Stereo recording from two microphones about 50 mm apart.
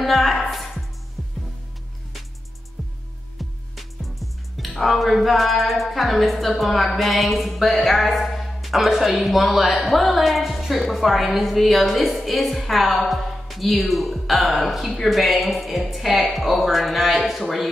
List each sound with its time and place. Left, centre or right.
0.0 s speech: centre
2.8 s music: centre
3.3 s speech: centre